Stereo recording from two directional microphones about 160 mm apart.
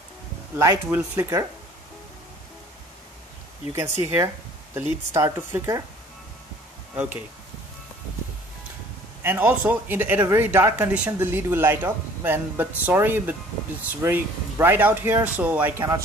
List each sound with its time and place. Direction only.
0.6 s speech: 15° right (ahead or behind)
4.0 s speech: 15° right (ahead or behind)
7.0 s speech: 10° right (ahead or behind)
9.2 s speech: 15° right (ahead or behind)